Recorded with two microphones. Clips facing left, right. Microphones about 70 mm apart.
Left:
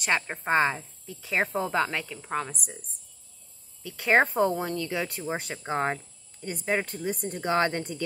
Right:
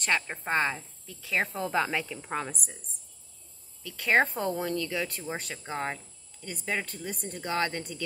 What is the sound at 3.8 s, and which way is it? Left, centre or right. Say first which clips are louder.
A woman's voice: left 2 dB; left.